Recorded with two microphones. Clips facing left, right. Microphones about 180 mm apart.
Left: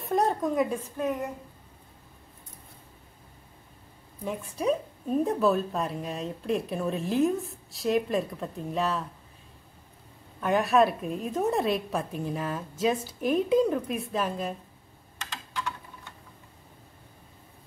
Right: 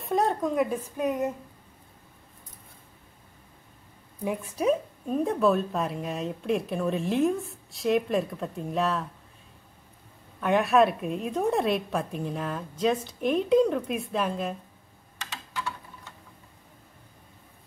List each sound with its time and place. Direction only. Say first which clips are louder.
0.0 s a sound: even; centre (ahead or behind)
0.9 s speech: right 4 dB; 20° right (ahead or behind)
4.2 s a woman's voice: right 3 dB; 10° right (ahead or behind)
10.4 s a woman's voice: right 1 dB; centre (ahead or behind)